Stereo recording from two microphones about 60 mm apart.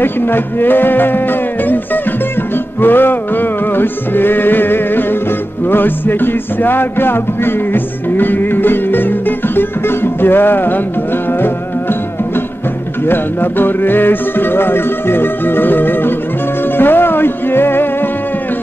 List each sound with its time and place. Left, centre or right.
0.0 s music: left
2.8 s music: left
13.0 s music: left